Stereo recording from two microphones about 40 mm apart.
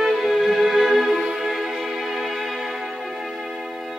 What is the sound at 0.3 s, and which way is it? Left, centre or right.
Music, centre.